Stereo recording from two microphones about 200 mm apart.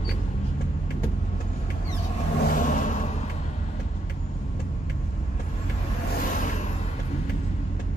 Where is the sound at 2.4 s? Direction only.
40° left (ahead or behind).